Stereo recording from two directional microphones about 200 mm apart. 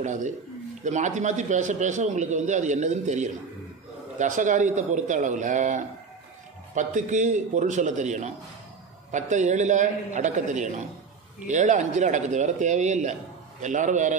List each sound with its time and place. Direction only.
0.0 s a man's voice: 40° right (ahead or behind)